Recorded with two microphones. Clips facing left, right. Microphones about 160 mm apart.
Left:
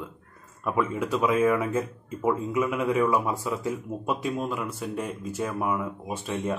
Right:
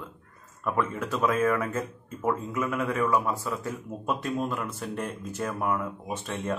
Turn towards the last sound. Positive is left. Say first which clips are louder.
# left 2 dB
turn(degrees=5)  # may be behind; listen again after turning